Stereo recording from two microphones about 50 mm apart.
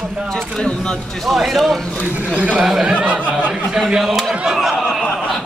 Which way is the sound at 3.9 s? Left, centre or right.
Centre.